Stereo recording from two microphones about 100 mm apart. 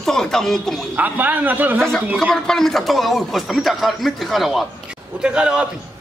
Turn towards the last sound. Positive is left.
turn(degrees=-10)  # may be behind; listen again after turning